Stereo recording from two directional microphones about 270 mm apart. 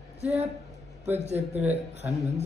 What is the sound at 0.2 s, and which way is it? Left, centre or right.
A man's voice, right.